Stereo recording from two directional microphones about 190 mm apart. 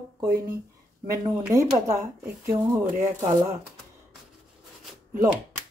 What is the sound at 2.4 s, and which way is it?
Speech, 15° right (ahead or behind).